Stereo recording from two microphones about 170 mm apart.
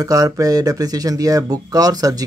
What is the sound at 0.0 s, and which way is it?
Speech, 20° right (ahead or behind).